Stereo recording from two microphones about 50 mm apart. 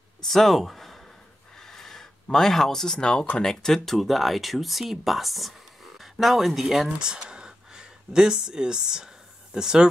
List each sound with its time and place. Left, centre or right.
0.2 s speech: centre
1.6 s snort: centre
2.2 s speech: centre
7.0 s a sound: centre